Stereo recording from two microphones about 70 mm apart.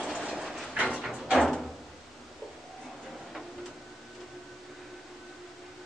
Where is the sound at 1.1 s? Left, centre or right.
Centre.